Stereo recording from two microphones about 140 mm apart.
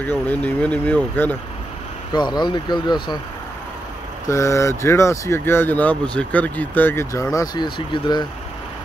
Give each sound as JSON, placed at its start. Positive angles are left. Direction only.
{"t": 0.0, "sound": "speech", "side_deg": 10}
{"t": 2.1, "sound": "speech", "side_deg": 30}
{"t": 4.3, "sound": "speech", "side_deg": 20}